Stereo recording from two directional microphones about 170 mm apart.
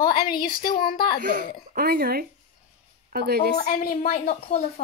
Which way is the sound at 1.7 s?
60° right (ahead or behind).